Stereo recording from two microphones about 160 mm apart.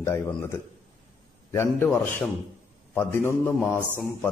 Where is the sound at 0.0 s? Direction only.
15° left (ahead or behind).